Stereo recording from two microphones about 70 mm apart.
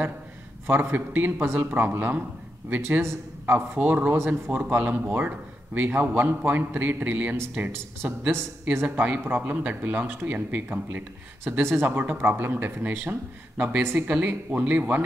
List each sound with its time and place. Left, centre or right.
0.7 s a man's voice: right
3.4 s a man's voice: right